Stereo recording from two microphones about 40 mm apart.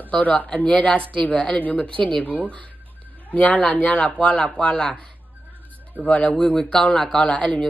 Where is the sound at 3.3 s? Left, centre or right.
Left.